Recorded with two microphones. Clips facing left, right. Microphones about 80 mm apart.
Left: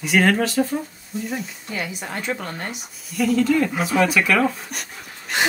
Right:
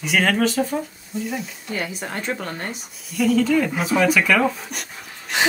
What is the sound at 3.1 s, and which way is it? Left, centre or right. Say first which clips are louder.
Speech: right 1 dB; centre.